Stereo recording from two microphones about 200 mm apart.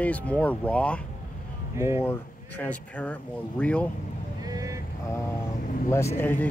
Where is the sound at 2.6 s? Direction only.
5° left (ahead or behind).